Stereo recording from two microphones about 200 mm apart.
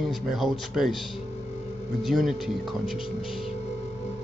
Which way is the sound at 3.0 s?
25° left (ahead or behind).